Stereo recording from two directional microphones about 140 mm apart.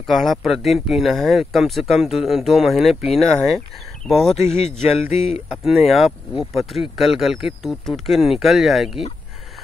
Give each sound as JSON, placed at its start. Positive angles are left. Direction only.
{"t": 0.0, "sound": "speech", "side_deg": 0}
{"t": 4.4, "sound": "speech", "side_deg": 50}
{"t": 5.7, "sound": "speech", "side_deg": 0}